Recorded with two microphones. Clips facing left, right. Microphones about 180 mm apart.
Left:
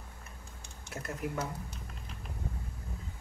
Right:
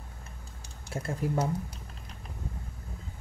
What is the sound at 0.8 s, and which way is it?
Speech, 30° right (ahead or behind).